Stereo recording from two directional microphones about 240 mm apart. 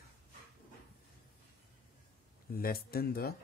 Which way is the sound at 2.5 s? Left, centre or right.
Left.